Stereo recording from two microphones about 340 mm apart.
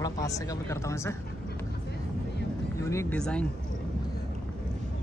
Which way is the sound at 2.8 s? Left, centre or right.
Centre.